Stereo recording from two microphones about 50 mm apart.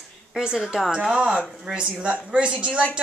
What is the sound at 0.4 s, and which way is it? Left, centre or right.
A woman's voice, centre.